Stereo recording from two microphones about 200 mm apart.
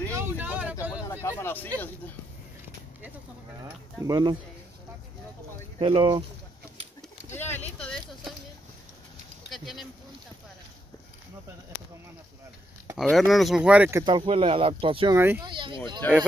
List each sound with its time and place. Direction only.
0.1 s vehicle: 10° right (ahead or behind)
1.4 s speech: 10° left (ahead or behind)
4.0 s speech: 20° right (ahead or behind)
5.8 s speech: 25° right (ahead or behind)
7.2 s speech: 10° left (ahead or behind)
9.5 s speech: centre (ahead or behind)
12.9 s speech: centre (ahead or behind); by 15.1 s 25° right (ahead or behind)
15.1 s speech: 10° right (ahead or behind)
15.4 s speech: 25° right (ahead or behind)